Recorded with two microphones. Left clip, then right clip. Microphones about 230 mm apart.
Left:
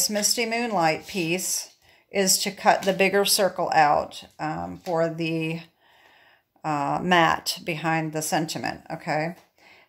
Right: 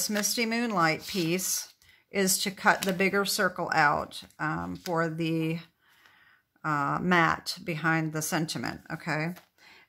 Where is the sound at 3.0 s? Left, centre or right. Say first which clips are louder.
Left 6 dB; right.